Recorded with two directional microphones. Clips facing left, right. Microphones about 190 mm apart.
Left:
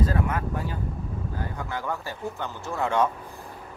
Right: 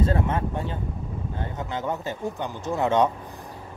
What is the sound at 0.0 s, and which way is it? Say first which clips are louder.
Speech: right 2 dB; 25° right (ahead or behind).